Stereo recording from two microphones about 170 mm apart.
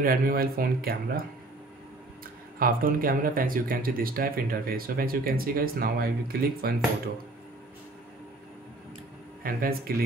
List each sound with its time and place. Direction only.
0.0 s speech: 60° right (ahead or behind)
2.6 s speech: 55° right (ahead or behind)
9.4 s speech: 60° right (ahead or behind)